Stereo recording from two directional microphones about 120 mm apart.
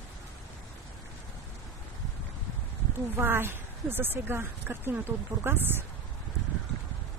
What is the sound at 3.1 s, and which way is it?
Speech, 20° right (ahead or behind).